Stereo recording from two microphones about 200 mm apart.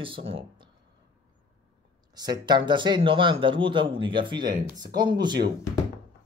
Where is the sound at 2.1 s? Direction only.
20° right (ahead or behind).